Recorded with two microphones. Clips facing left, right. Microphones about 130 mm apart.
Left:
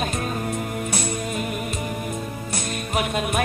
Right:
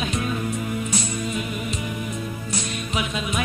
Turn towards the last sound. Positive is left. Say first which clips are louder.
# left 3 dB
turn(degrees=50)  # may be behind; listen again after turning